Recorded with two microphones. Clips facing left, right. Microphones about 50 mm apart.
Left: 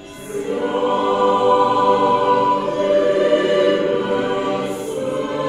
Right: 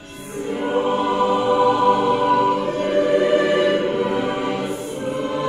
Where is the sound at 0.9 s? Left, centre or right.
Left.